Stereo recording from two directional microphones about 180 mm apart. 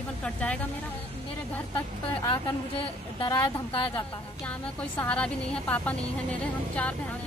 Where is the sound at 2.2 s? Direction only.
30° left (ahead or behind).